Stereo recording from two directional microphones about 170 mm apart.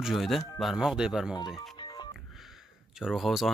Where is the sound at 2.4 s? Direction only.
Centre (ahead or behind).